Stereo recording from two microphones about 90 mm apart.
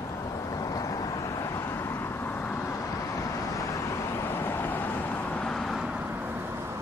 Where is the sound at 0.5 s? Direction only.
40° left (ahead or behind); by 2.6 s 20° left (ahead or behind).